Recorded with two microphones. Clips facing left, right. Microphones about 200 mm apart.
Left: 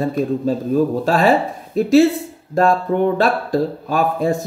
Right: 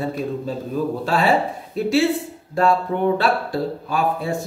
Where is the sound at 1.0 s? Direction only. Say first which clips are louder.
Left 4 dB; 45° left (ahead or behind).